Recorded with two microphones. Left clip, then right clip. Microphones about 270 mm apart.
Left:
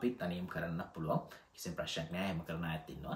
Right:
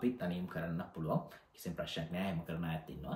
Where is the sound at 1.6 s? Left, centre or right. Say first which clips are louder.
Left 1 dB; centre.